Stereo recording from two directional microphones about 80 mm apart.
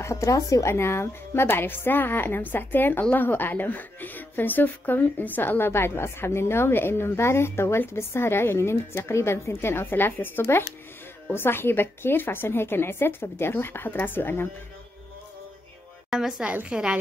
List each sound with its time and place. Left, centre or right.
0.0 s a woman's voice: left
16.1 s a woman's voice: centre